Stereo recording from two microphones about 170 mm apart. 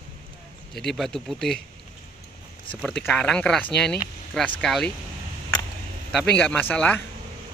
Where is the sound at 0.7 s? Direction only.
Centre (ahead or behind).